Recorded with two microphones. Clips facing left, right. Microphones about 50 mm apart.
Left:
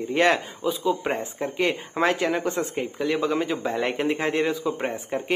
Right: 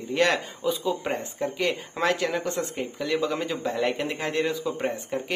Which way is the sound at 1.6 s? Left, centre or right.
Centre.